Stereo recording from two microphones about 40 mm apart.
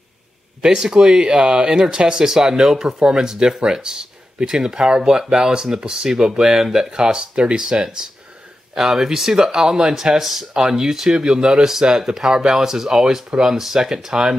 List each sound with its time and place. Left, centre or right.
0.6 s speech: centre